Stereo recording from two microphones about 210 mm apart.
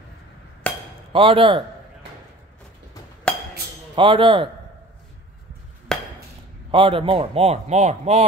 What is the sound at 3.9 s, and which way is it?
Speech, 25° right (ahead or behind).